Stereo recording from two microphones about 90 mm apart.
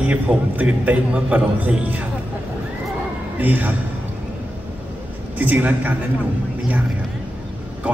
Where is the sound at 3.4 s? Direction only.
20° right (ahead or behind).